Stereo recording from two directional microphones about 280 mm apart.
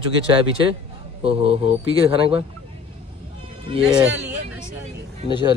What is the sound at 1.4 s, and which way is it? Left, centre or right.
Speech, centre.